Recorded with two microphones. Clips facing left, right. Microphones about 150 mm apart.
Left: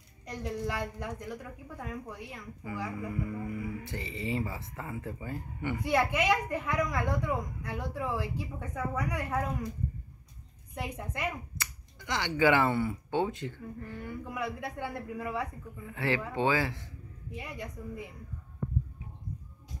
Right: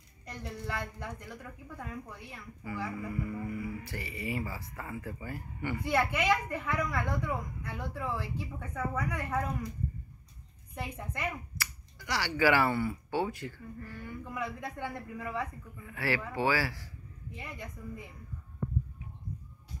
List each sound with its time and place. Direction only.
0.3 s a woman's voice: 15° left (ahead or behind)
10.8 s a woman's voice: 15° left (ahead or behind)